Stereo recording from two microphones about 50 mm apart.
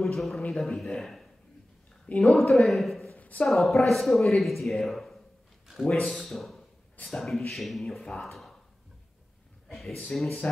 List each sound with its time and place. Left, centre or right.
0.0 s speech: centre
2.0 s speech: left
2.3 s speech: centre
3.2 s a sound: left
3.4 s speech: centre
5.9 s speech: centre
9.7 s speech: centre